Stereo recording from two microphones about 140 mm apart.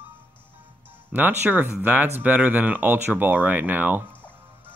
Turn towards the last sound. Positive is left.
turn(degrees=-15)  # may be behind; listen again after turning